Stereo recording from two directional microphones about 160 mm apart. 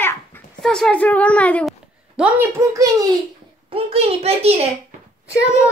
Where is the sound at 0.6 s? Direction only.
5° left (ahead or behind).